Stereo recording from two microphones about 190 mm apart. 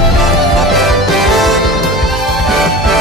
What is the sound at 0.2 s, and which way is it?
Music, centre (ahead or behind).